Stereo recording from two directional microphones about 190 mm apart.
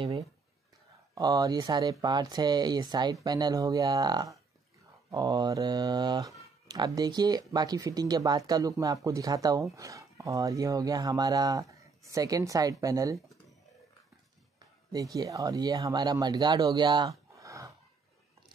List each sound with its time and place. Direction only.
1.1 s speech: 20° right (ahead or behind)
15.1 s speech: 20° right (ahead or behind)